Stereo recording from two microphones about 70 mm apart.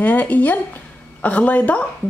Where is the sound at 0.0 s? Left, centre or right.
Left.